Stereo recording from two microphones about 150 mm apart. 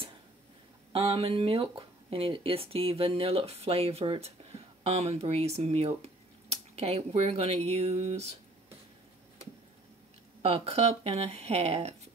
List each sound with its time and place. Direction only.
0.9 s speech: 40° right (ahead or behind)
10.4 s speech: 45° right (ahead or behind)